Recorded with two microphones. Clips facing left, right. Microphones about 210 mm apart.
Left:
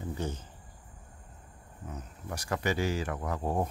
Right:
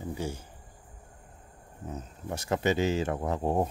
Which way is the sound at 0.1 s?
10° right (ahead or behind).